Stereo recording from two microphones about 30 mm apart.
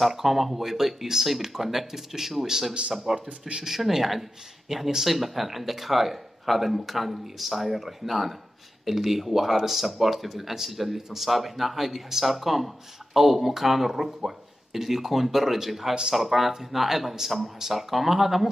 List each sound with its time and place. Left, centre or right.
0.0 s speech: centre
15.9 s speech: right
16.2 s speech: centre